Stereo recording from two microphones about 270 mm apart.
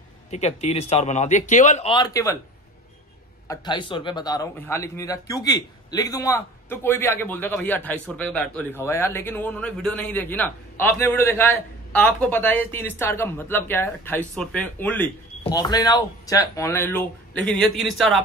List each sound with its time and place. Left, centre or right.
0.3 s a man's voice: left
3.4 s speech: centre